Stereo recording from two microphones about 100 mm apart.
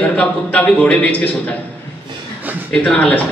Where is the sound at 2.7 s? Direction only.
15° left (ahead or behind).